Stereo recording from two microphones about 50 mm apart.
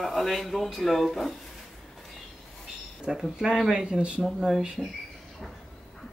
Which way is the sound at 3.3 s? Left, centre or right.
Centre.